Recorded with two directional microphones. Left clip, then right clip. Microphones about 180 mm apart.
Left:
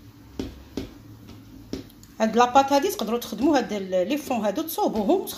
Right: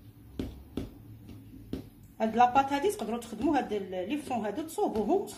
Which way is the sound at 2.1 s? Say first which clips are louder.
Left 6 dB; 30° left (ahead or behind).